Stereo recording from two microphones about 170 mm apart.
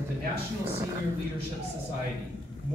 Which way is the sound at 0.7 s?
15° right (ahead or behind).